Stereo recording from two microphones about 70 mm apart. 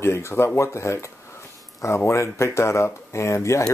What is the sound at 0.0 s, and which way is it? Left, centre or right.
Speech, left.